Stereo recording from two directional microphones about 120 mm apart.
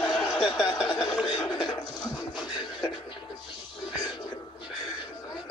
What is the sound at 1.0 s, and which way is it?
Speech, 35° left (ahead or behind).